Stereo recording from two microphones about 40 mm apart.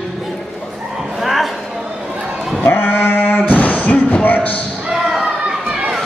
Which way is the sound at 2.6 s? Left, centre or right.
Left.